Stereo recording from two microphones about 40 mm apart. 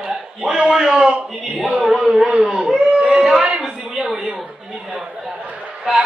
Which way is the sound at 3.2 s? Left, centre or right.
Centre.